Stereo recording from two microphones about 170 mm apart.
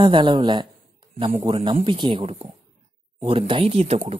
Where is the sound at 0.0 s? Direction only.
30° right (ahead or behind).